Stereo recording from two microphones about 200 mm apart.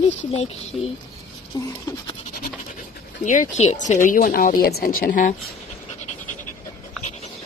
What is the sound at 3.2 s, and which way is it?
Speech, 40° left (ahead or behind).